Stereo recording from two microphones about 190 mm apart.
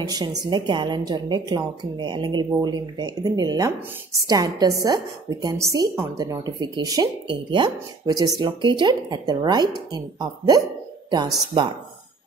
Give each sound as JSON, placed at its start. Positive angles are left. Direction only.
{"t": 0.1, "sound": "a woman's voice", "side_deg": -20}